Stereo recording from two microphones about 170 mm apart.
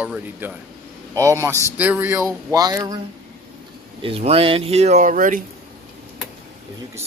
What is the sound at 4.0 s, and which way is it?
Speech, 35° right (ahead or behind).